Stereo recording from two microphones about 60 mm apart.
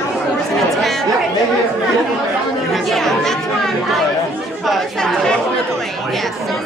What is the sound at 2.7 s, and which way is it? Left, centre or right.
Chatter, centre.